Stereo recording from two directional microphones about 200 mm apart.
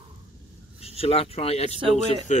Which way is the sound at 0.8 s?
30° left (ahead or behind).